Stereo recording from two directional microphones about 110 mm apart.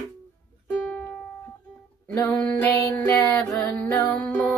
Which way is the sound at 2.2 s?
10° left (ahead or behind).